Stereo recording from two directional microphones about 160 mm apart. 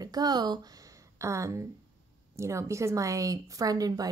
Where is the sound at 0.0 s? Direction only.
25° right (ahead or behind).